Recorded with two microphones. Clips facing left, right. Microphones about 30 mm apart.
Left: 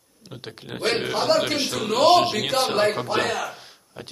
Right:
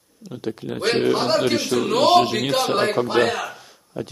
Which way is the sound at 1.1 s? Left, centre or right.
Centre.